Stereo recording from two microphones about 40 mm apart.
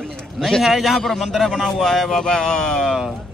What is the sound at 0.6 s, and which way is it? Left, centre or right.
Speech, centre.